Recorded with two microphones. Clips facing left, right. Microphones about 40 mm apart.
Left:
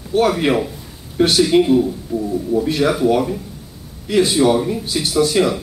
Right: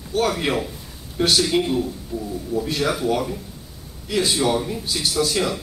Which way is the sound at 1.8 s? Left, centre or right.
Left.